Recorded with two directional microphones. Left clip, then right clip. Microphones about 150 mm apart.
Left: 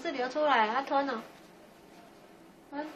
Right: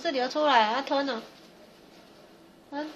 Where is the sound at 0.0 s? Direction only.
55° right (ahead or behind).